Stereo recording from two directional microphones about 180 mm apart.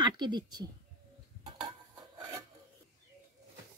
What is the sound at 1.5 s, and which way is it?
Stir, 25° right (ahead or behind).